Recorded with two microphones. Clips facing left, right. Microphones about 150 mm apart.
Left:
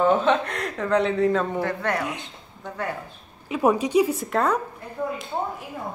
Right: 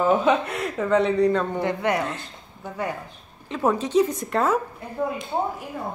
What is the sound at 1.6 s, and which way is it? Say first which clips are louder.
Speech: right 2 dB; 15° right (ahead or behind).